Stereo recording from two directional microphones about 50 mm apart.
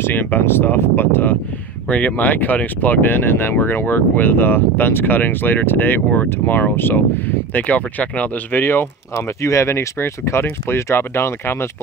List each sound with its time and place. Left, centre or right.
0.0 s speech: left
1.9 s speech: left
8.6 s speech: left